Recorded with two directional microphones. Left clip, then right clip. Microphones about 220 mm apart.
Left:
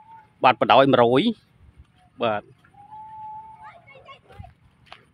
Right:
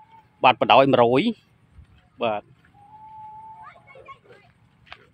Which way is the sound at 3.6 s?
45° left (ahead or behind).